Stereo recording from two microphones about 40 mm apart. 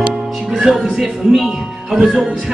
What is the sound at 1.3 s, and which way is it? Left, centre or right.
Speech, centre.